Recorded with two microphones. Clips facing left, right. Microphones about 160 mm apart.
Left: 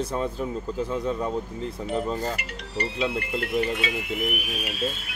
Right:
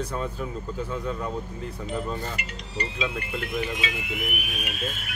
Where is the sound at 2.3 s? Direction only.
60° left (ahead or behind).